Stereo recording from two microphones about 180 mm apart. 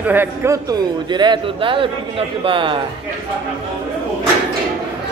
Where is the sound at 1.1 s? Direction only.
25° right (ahead or behind).